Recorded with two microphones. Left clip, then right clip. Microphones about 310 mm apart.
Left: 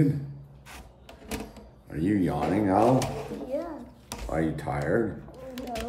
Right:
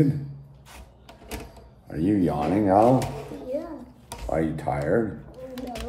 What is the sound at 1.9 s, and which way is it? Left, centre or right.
Speech, centre.